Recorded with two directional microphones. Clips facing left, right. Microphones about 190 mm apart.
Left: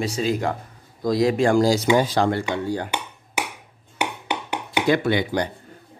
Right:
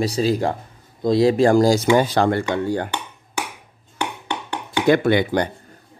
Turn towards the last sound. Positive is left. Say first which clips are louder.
# right 4 dB
turn(degrees=-55)  # may be behind; listen again after turning